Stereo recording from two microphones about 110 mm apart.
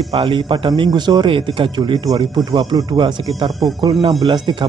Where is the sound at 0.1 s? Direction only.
55° right (ahead or behind).